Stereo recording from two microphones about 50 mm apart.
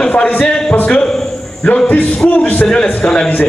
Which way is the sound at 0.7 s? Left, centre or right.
Left.